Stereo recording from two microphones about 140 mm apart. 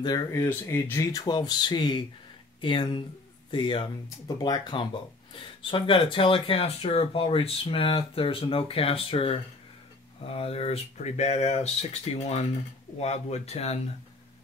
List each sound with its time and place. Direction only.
0.3 s speech: 20° left (ahead or behind)
1.2 s speech: 30° left (ahead or behind); by 13.7 s 50° left (ahead or behind)